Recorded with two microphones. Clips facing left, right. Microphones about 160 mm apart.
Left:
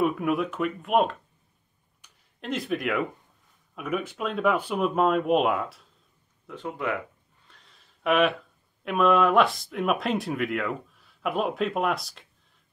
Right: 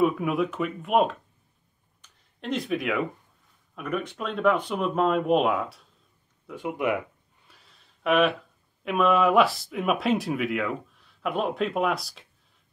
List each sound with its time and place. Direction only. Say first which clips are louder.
0.0 s speech: right 1 dB; centre (ahead or behind)
2.0 s a sound: even; centre (ahead or behind)
3.7 s speech: even; 5° left (ahead or behind)
6.5 s speech: right 3 dB; 15° right (ahead or behind)
7.4 s a sound: even; 5° right (ahead or behind)
8.8 s speech: even; centre (ahead or behind)